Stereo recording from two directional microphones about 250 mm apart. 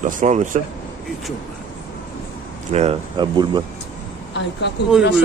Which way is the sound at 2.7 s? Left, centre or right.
Right.